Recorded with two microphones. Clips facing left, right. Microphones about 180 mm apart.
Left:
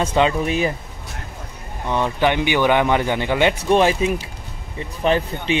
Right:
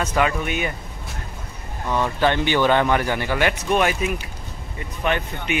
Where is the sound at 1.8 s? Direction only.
20° left (ahead or behind).